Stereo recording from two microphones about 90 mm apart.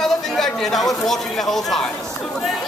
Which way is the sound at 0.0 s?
5° left (ahead or behind).